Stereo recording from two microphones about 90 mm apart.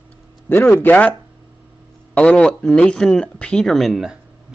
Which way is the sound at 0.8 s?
15° left (ahead or behind).